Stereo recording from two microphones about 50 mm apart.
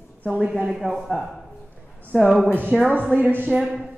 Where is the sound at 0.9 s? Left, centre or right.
Centre.